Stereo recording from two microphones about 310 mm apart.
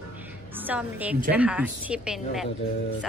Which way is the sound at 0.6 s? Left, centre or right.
Centre.